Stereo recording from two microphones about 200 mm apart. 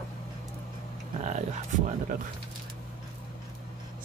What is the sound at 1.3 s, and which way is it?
Music, 35° right (ahead or behind).